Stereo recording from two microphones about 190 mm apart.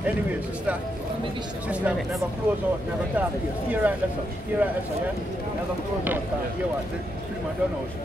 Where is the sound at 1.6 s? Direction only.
5° right (ahead or behind).